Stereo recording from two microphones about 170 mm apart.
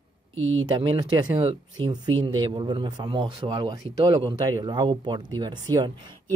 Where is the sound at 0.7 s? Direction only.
25° right (ahead or behind).